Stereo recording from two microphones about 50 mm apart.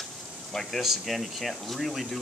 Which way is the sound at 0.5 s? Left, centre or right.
Centre.